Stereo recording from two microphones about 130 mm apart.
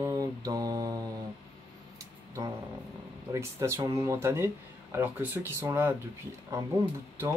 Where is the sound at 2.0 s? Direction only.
25° right (ahead or behind).